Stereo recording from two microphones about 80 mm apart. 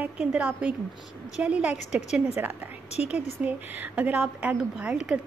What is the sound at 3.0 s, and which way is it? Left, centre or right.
A woman's voice, right.